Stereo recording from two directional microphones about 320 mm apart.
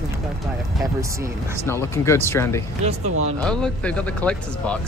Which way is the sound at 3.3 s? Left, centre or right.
Centre.